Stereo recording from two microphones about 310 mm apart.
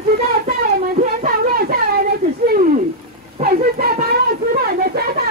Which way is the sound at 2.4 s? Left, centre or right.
Right.